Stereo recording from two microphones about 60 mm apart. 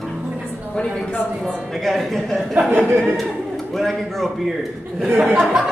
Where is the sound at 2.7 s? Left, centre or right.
Right.